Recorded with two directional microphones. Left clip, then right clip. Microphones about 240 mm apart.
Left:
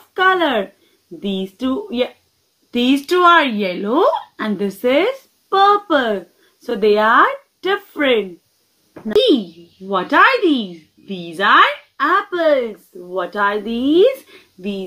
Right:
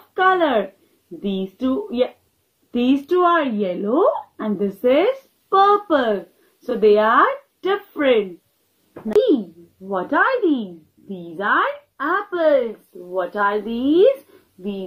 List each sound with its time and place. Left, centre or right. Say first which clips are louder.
0.1 s a sound: left 2 dB; left
1.2 s speech: left 2 dB; left
9.8 s speech: left 6 dB; left